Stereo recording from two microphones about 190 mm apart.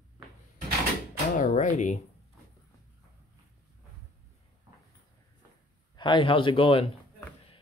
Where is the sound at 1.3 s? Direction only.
40° left (ahead or behind).